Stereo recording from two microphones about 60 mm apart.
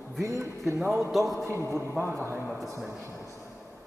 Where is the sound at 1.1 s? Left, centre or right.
Centre.